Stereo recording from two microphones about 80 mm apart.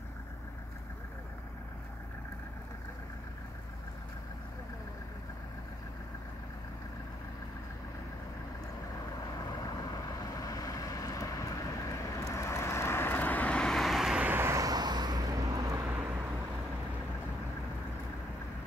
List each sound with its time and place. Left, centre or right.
9.5 s vehicle: left; by 14.2 s centre
14.2 s vehicle: right
14.6 s vehicle: right
15.9 s vehicle: right